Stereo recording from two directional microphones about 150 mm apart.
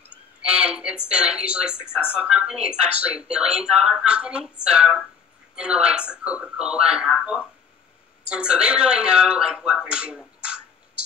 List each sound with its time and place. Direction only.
0.4 s speech: 5° right (ahead or behind)